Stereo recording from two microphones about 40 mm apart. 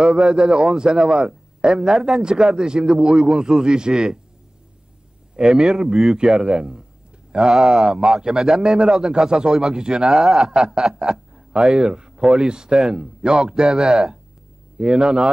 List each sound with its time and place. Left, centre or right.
0.0 s speech: centre
5.3 s a man's voice: centre
10.1 s speech: centre